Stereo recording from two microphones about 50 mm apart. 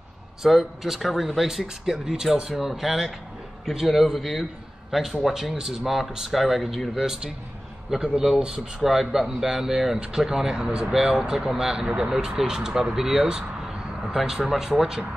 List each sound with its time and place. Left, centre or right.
0.4 s speech: centre
8.8 s speech: centre